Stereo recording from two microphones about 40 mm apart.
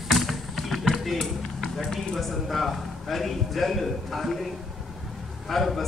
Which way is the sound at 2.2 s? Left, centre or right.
Centre.